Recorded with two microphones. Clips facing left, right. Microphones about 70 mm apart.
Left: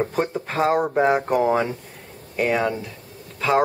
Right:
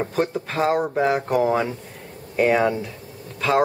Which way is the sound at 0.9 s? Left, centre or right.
Centre.